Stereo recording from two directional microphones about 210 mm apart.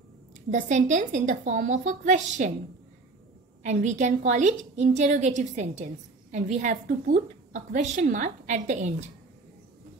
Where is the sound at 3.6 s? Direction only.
35° right (ahead or behind).